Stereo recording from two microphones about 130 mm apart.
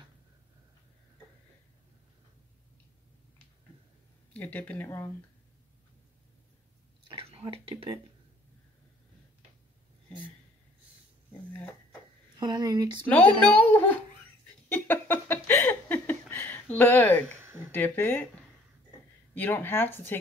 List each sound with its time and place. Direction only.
4.3 s speech: 10° left (ahead or behind)
7.1 s whispering: 45° right (ahead or behind)
12.4 s speech: 35° right (ahead or behind)
13.1 s speech: 10° left (ahead or behind)
14.7 s a sound: 15° left (ahead or behind)
17.6 s speech: 15° left (ahead or behind)
19.3 s speech: 15° left (ahead or behind)